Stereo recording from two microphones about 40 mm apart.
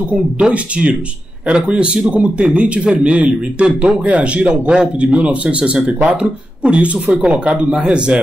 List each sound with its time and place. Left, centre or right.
0.1 s a man's voice: right
7.8 s a man's voice: right